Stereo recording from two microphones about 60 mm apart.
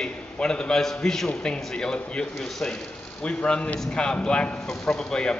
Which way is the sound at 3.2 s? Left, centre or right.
Centre.